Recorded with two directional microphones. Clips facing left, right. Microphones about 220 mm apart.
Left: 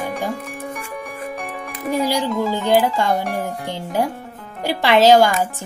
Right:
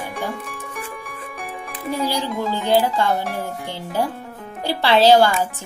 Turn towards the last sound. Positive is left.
turn(degrees=15)  # may be behind; listen again after turning